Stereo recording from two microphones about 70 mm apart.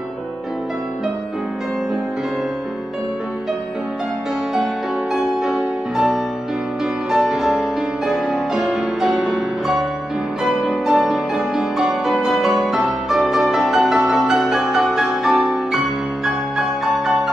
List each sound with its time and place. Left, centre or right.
5.1 s music: centre